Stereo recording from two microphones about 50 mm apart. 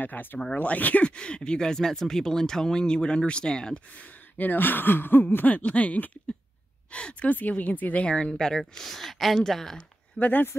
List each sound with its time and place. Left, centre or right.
0.0 s speech: left
1.0 s speech: centre
3.9 s speech: left
8.1 s speech: centre
10.1 s speech: left